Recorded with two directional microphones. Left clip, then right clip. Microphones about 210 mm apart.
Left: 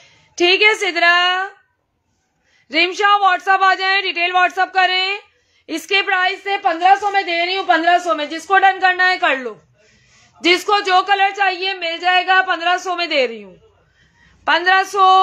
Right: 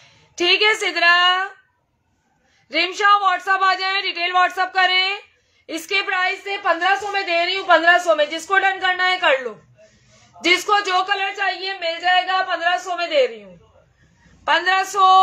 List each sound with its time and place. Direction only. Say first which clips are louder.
0.0 s a woman's voice: left 4 dB; 25° left (ahead or behind)
2.7 s a man's voice: left 2 dB; 30° left (ahead or behind)
5.7 s a woman's voice: left 4 dB; 35° left (ahead or behind); by 13.5 s 55° left (ahead or behind)
14.4 s a woman's voice: left 3 dB; 35° left (ahead or behind)